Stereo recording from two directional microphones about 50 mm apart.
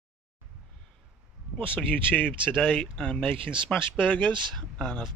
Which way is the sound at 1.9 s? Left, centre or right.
Left.